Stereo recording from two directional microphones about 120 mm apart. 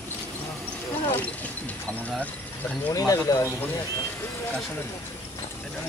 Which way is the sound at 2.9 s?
30° left (ahead or behind).